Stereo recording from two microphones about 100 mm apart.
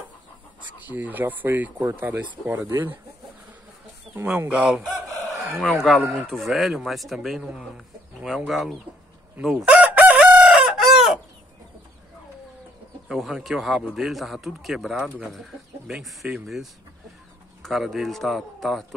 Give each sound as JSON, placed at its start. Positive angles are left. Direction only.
{"t": 0.6, "sound": "speech", "side_deg": -15}
{"t": 4.5, "sound": "speech", "side_deg": -5}
{"t": 9.7, "sound": "chicken", "side_deg": -15}
{"t": 13.1, "sound": "speech", "side_deg": 0}
{"t": 17.6, "sound": "speech", "side_deg": 0}